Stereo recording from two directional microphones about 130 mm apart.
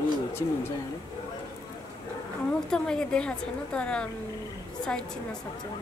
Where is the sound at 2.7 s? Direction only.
5° left (ahead or behind).